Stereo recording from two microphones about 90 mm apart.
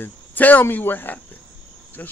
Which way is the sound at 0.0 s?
20° left (ahead or behind).